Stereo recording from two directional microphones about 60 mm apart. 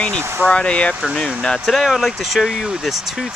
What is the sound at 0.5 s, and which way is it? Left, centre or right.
Speech, centre.